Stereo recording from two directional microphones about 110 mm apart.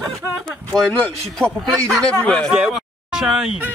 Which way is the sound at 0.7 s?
5° left (ahead or behind).